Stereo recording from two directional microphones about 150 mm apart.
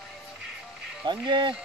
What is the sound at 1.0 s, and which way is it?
Speech, 30° right (ahead or behind).